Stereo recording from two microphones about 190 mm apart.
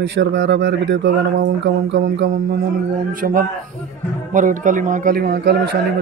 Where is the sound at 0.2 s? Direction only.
70° right (ahead or behind).